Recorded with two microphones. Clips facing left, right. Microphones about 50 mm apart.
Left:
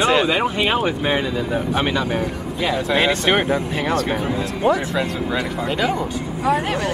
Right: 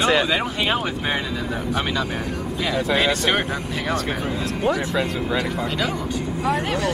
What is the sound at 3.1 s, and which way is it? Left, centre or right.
Speech, left.